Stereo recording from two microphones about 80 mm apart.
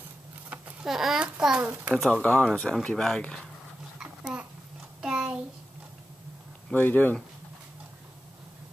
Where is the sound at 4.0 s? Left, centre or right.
Centre.